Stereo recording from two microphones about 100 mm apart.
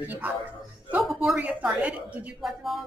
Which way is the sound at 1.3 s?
15° right (ahead or behind).